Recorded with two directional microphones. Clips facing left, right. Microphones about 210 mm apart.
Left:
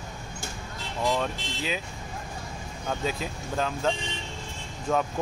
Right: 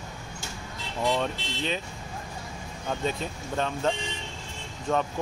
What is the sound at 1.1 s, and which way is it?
Speech, 5° left (ahead or behind).